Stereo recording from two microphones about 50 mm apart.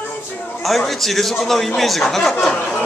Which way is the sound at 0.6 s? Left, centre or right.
Centre.